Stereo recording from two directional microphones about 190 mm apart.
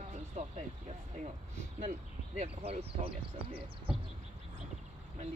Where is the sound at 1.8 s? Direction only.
40° right (ahead or behind).